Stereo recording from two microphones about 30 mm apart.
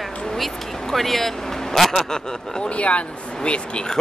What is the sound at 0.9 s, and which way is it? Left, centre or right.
Speech, centre.